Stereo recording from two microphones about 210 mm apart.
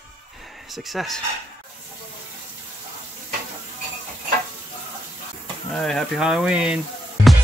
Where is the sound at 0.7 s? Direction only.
Centre (ahead or behind).